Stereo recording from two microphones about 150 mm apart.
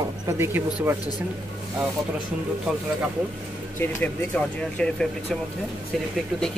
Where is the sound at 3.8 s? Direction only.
15° left (ahead or behind).